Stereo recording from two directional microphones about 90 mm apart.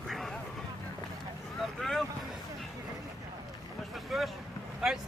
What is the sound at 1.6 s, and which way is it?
Speech, centre (ahead or behind).